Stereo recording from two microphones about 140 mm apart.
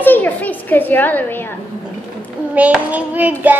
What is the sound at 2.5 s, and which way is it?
Child singing, 10° right (ahead or behind).